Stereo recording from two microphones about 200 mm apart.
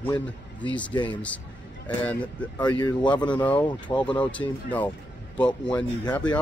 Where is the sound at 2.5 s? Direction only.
20° left (ahead or behind).